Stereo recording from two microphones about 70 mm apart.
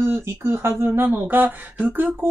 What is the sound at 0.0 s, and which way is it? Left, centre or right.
Speech, right.